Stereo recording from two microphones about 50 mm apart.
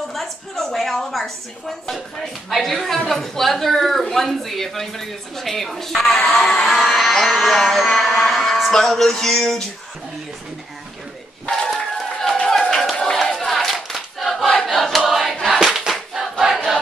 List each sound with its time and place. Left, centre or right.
0.1 s a woman's voice: centre
6.6 s music: centre
12.1 s clapping: centre
13.8 s choir: centre
15.9 s crowd: centre